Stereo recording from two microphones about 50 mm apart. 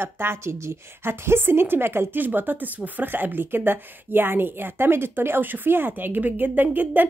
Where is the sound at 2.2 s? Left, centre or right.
Right.